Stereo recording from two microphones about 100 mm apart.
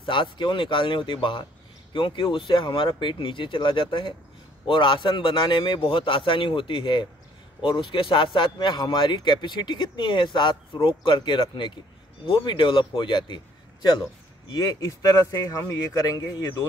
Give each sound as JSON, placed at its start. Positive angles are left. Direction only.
{"t": 0.0, "sound": "a man's voice", "side_deg": 55}
{"t": 14.5, "sound": "speech", "side_deg": 35}